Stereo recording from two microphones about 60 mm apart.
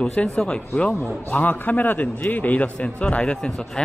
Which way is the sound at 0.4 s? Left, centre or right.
Centre.